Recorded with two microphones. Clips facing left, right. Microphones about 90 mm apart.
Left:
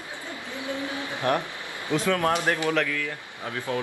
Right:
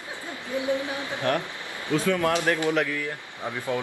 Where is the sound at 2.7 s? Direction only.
15° right (ahead or behind).